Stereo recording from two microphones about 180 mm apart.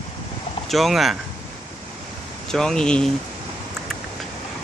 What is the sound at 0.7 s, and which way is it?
Speech, centre (ahead or behind).